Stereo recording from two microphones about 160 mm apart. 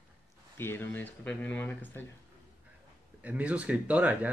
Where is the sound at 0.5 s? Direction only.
15° left (ahead or behind).